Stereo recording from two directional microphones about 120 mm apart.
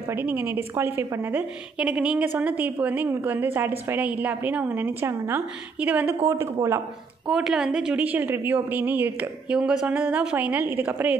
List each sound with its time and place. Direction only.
0.1 s a woman's voice: 15° right (ahead or behind)
7.2 s a woman's voice: 5° right (ahead or behind)